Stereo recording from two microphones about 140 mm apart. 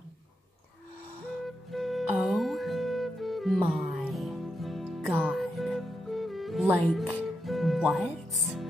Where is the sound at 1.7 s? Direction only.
Centre (ahead or behind).